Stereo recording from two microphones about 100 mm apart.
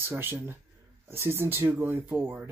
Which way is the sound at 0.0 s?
20° right (ahead or behind).